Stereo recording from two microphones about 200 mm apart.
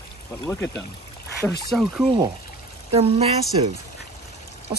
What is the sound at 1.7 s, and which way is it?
Speech, centre (ahead or behind).